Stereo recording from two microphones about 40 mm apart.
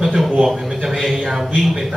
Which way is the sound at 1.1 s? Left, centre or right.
Centre.